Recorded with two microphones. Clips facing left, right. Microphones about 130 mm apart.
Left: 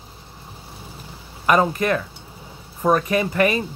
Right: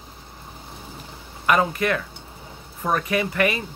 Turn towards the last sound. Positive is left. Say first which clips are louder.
# left 3 dB
turn(degrees=30)  # may be behind; listen again after turning